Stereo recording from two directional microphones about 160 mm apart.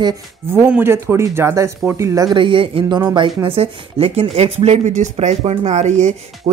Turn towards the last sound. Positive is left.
turn(degrees=-45)  # may be behind; listen again after turning